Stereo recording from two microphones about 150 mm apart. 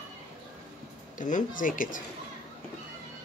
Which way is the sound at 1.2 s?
60° left (ahead or behind).